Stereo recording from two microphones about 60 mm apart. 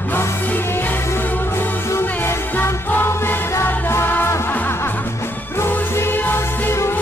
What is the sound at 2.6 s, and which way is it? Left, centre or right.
Music, left.